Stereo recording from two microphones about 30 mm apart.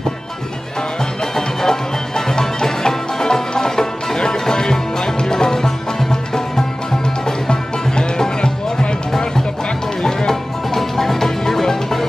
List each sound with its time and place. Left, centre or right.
1.2 s music: centre